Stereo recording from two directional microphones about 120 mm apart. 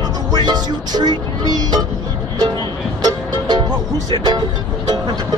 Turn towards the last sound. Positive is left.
turn(degrees=-40)  # may be behind; listen again after turning